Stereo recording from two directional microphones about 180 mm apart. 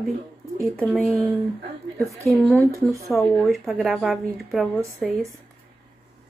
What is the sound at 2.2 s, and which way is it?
Speech, 5° left (ahead or behind).